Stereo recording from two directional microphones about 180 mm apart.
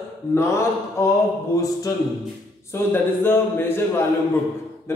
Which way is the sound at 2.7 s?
10° left (ahead or behind).